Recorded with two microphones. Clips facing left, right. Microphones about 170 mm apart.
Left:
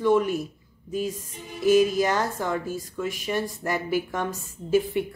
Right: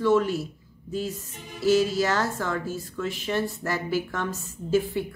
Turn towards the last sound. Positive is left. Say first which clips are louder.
# left 1 dB
turn(degrees=20)  # may be behind; listen again after turning